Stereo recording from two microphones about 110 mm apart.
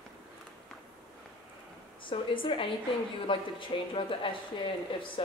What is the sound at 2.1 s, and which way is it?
Speech, 50° left (ahead or behind).